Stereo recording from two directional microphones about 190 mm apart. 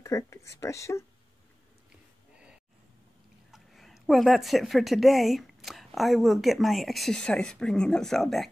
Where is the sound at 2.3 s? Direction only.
5° right (ahead or behind).